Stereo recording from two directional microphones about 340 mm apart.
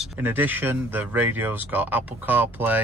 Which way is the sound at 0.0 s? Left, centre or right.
Centre.